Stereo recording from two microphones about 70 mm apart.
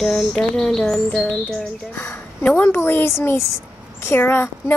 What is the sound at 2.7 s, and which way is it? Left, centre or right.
A woman's voice, left.